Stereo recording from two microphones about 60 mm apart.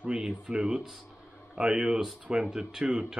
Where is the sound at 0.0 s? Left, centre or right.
Centre.